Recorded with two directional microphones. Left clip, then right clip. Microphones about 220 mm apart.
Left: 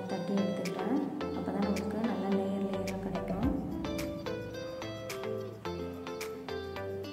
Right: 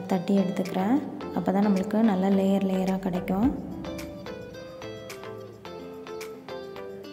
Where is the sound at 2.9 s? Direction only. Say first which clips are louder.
Right 7 dB; centre (ahead or behind).